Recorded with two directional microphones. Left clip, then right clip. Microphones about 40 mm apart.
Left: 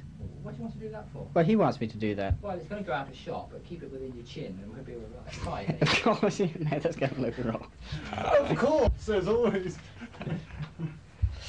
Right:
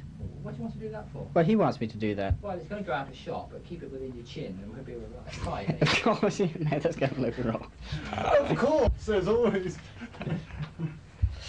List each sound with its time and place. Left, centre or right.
0.5 s speech: right